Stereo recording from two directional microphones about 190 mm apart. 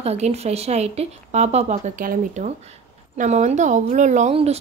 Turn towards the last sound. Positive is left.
turn(degrees=-30)  # may be behind; listen again after turning